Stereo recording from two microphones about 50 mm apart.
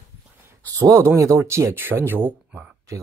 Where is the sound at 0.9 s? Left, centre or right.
Right.